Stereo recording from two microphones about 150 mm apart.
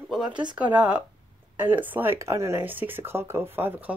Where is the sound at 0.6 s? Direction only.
10° right (ahead or behind).